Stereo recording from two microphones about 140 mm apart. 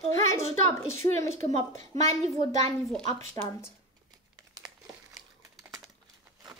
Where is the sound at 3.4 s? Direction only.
55° right (ahead or behind).